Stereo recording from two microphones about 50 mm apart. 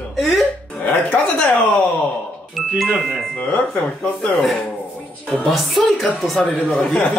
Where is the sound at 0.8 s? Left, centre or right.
Left.